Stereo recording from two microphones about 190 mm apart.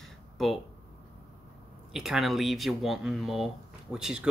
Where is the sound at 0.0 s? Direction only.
Centre (ahead or behind).